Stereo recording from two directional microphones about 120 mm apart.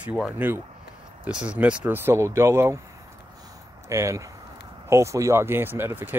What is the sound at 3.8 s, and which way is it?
Speech, 25° right (ahead or behind).